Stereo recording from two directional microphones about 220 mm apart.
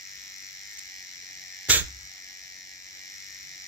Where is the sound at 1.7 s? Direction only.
5° right (ahead or behind).